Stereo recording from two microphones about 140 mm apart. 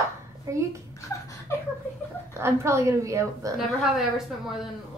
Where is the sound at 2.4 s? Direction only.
20° right (ahead or behind).